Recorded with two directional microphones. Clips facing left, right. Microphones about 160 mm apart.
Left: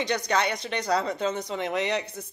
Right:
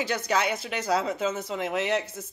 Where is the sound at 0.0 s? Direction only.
5° right (ahead or behind).